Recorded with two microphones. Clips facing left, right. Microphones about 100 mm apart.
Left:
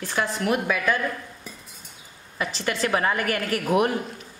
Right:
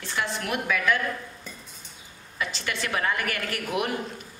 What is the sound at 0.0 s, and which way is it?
Speech, 40° left (ahead or behind).